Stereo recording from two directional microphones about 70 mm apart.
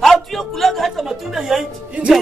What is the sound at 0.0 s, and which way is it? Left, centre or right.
Music, centre.